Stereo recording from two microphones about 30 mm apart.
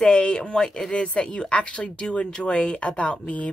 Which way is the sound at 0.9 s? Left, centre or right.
Left.